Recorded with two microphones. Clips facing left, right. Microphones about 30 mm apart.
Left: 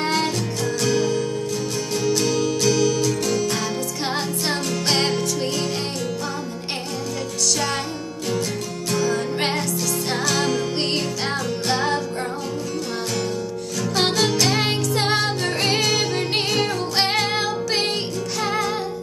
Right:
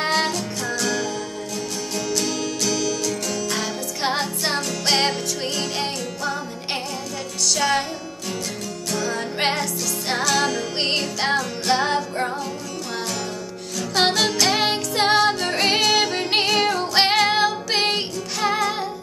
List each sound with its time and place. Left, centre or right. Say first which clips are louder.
0.0 s music: right 1 dB; centre
0.7 s music: left 5 dB; centre
3.5 s music: left 1 dB; centre
7.5 s music: right 6 dB; centre
8.9 s music: left 3 dB; centre
10.8 s music: right 1 dB; centre
11.3 s music: right 2 dB; centre
13.9 s music: right 1 dB; centre